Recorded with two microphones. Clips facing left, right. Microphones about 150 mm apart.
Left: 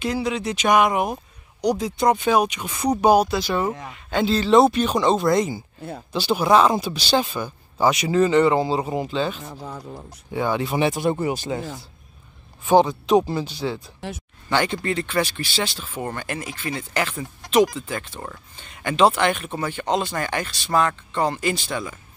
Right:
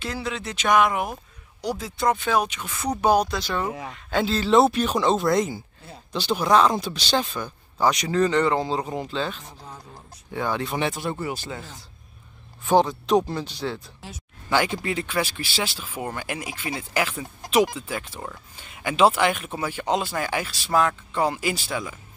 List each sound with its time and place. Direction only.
0.0 s speech: 15° left (ahead or behind)
3.9 s speech: centre (ahead or behind)
9.5 s speech: 65° left (ahead or behind)
10.3 s speech: 5° left (ahead or behind)
12.6 s speech: centre (ahead or behind)